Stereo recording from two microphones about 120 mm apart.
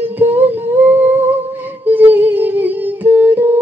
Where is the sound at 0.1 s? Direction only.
15° right (ahead or behind).